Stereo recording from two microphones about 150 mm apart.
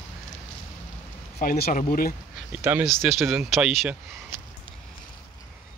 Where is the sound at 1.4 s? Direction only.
80° left.